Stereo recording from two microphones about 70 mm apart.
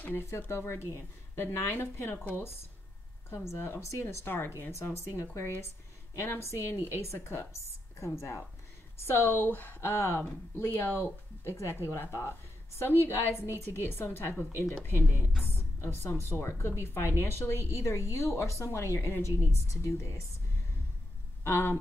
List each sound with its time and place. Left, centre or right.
0.0 s speech: left
6.1 s speech: left
9.0 s a woman's voice: left
21.5 s speech: left